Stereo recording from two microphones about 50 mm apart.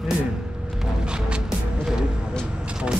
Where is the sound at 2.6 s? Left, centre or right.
Centre.